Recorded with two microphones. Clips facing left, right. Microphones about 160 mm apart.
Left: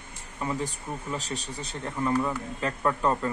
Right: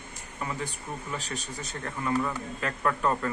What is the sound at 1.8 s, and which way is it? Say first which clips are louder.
Speech: left 2 dB; 20° left (ahead or behind).